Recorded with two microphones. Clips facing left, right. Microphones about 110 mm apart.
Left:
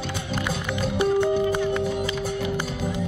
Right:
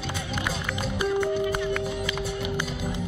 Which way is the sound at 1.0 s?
25° left (ahead or behind).